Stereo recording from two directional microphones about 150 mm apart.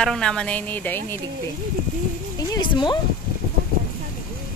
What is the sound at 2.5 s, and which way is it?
Speech, 30° left (ahead or behind).